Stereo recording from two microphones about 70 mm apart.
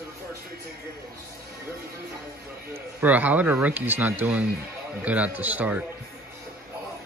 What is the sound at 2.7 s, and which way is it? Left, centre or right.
Speech, right.